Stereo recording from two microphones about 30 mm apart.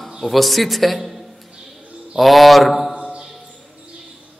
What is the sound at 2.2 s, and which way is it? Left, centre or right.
Mantra, centre.